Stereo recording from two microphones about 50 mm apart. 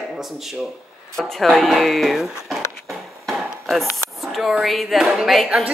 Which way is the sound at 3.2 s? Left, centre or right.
Centre.